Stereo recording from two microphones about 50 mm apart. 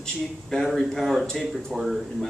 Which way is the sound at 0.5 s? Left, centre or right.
Centre.